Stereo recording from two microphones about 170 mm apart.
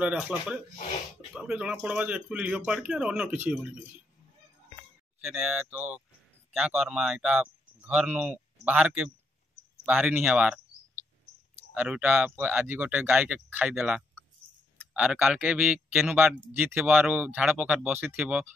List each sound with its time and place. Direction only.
0.0 s speech: 10° right (ahead or behind)
5.4 s speech: 10° right (ahead or behind)
11.7 s speech: 10° right (ahead or behind)